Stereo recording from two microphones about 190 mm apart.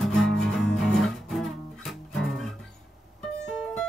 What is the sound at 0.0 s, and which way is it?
Music, centre (ahead or behind).